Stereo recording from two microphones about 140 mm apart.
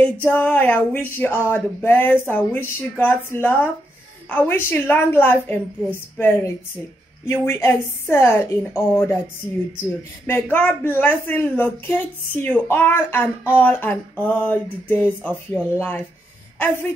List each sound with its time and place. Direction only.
0.2 s speech: 15° left (ahead or behind)
10.2 s a woman's voice: 15° left (ahead or behind)